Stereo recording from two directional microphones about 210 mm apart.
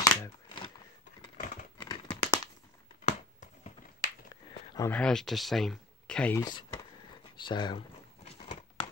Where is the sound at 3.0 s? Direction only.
30° left (ahead or behind).